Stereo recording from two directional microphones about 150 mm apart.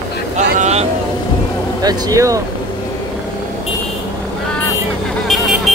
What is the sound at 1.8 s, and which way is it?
Speech, 25° right (ahead or behind).